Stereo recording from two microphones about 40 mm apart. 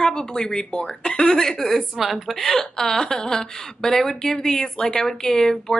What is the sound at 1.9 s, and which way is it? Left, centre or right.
Speech, centre.